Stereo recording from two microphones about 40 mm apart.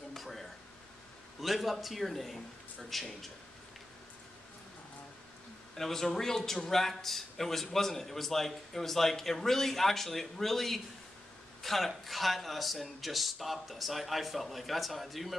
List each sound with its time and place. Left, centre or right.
0.1 s a sound: centre
1.4 s speech: centre
5.8 s a man's voice: centre